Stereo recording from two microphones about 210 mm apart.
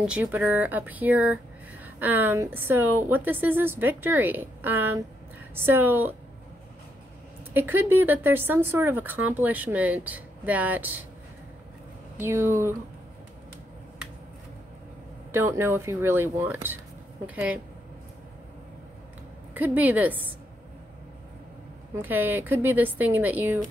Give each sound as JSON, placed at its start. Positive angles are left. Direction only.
{"t": 0.0, "sound": "speech", "side_deg": -5}
{"t": 7.5, "sound": "speech", "side_deg": -10}
{"t": 12.2, "sound": "speech", "side_deg": -10}
{"t": 15.3, "sound": "speech", "side_deg": -10}
{"t": 19.5, "sound": "speech", "side_deg": -10}
{"t": 21.9, "sound": "speech", "side_deg": -10}